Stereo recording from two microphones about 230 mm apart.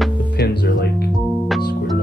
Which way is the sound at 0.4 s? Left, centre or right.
Left.